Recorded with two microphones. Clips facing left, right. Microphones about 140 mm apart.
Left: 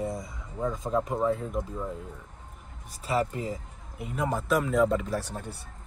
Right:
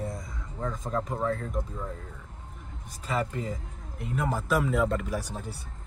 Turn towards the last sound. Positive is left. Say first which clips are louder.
# left 1 dB
turn(degrees=-10)  # may be behind; listen again after turning